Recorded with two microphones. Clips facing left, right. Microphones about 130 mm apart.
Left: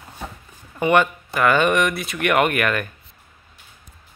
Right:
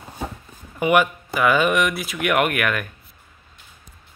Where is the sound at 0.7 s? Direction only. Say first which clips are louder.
Even; 5° right (ahead or behind).